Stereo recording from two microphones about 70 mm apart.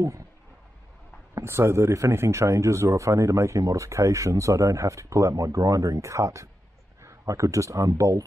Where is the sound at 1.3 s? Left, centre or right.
Right.